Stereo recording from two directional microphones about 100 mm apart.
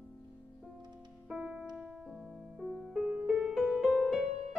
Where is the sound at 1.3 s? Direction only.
5° right (ahead or behind).